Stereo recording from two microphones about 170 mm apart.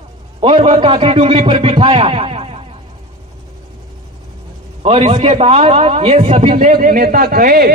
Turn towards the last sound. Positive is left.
turn(degrees=-60)  # may be behind; listen again after turning